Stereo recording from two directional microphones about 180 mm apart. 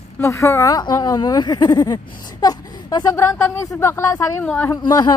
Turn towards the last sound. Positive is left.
turn(degrees=20)  # may be behind; listen again after turning